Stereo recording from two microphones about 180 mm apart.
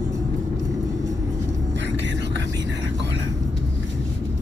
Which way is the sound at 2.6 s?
80° right.